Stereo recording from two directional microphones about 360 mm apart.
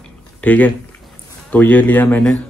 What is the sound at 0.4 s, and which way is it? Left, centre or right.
Speech, centre.